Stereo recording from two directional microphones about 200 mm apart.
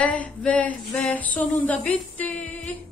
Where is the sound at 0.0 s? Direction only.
5° left (ahead or behind).